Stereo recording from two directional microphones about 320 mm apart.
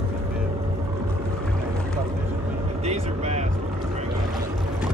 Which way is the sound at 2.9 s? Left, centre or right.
Right.